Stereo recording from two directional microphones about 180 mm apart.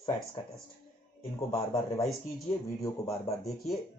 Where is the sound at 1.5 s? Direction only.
20° left (ahead or behind).